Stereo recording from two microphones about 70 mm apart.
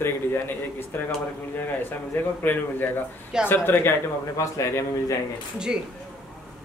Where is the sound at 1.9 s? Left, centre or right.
Left.